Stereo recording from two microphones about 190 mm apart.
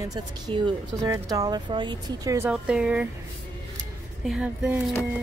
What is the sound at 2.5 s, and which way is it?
Speech, 5° right (ahead or behind).